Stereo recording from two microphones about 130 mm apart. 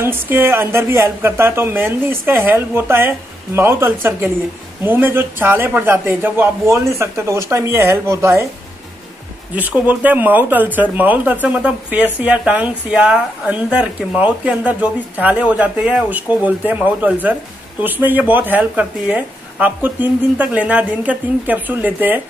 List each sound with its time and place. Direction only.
0.0 s speech: 15° right (ahead or behind)
9.6 s speech: 10° right (ahead or behind)